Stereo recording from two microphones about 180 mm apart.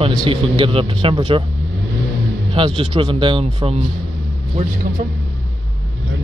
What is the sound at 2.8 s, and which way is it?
Speech, 30° right (ahead or behind).